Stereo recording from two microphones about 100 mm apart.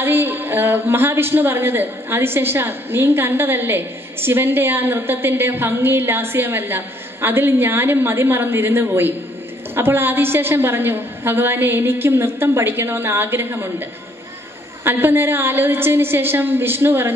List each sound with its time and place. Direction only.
0.0 s a woman's voice: 20° right (ahead or behind)
14.9 s a woman's voice: 20° right (ahead or behind)